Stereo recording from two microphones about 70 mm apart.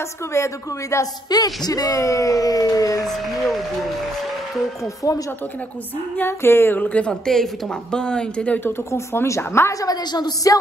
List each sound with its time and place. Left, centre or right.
0.3 s speech: left
1.3 s speech: left
4.8 s speech: left
6.1 s speech: left
7.1 s a woman's voice: centre
8.6 s a woman's voice: left
9.8 s speech: left